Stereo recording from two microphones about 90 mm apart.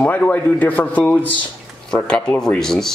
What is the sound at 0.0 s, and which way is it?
A man's voice, 20° left (ahead or behind).